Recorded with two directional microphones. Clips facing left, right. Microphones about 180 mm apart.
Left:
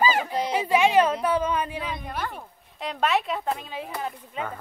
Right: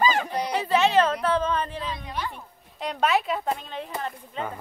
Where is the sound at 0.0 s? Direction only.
10° left (ahead or behind).